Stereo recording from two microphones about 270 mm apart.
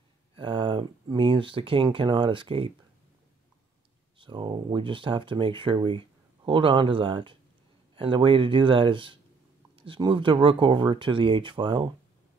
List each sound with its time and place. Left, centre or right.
0.4 s speech: centre
4.2 s speech: centre